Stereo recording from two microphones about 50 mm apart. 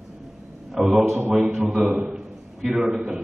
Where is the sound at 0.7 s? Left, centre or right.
Centre.